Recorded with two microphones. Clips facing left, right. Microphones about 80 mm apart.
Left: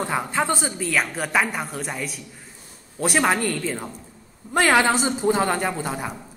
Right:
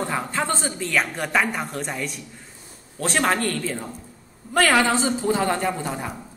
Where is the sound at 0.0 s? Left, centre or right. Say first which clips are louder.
Left 2 dB; centre.